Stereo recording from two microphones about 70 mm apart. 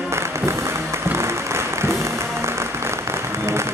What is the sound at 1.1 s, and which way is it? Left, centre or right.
Applause, right.